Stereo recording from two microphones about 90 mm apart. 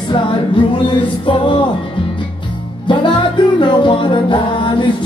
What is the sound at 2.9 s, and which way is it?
Music, 60° left (ahead or behind).